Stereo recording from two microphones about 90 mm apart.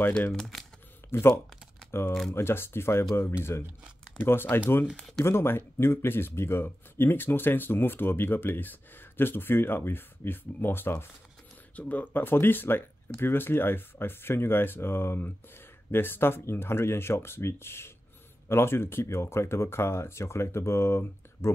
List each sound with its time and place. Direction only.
0.3 s speech: centre (ahead or behind)
1.1 s speech: 30° left (ahead or behind)
4.9 s speech: 5° left (ahead or behind)
5.2 s speech: 25° left (ahead or behind)